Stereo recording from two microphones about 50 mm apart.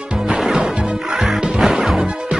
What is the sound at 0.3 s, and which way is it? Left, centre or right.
Music, centre.